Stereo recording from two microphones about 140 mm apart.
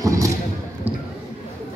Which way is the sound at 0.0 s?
25° right (ahead or behind).